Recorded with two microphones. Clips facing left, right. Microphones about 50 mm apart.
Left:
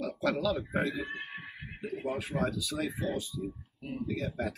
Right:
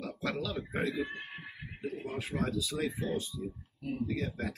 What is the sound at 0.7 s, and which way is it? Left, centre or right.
Speech, centre.